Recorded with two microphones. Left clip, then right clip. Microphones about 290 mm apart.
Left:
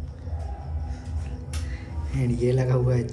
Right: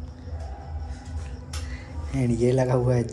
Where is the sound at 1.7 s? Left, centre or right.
Centre.